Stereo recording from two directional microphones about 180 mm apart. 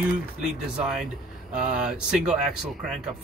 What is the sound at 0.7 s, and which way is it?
Speech, 5° right (ahead or behind).